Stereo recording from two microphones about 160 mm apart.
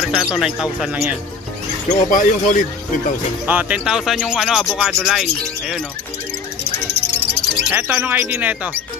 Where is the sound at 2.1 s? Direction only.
55° left (ahead or behind).